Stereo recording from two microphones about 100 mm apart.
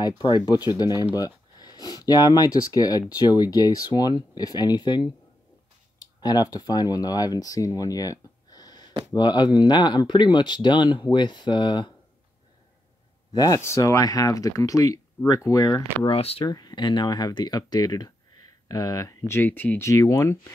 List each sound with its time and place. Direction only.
0.0 s speech: 45° left (ahead or behind)
13.3 s speech: 40° left (ahead or behind)
13.6 s speech: 30° left (ahead or behind)
16.1 s speech: 80° left
16.4 s speech: 40° left (ahead or behind); by 19.9 s 20° left (ahead or behind)
19.9 s speech: 35° left (ahead or behind)